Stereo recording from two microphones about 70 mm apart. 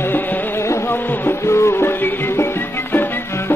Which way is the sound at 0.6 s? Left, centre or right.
Left.